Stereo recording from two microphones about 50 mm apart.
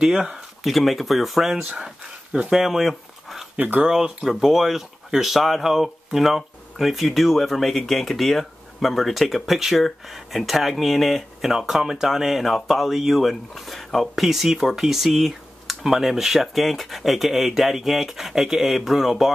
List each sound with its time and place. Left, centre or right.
0.0 s speech: centre
0.7 s speech: centre
1.6 s speech: right
2.5 s speech: centre
3.5 s speech: right
4.2 s speech: centre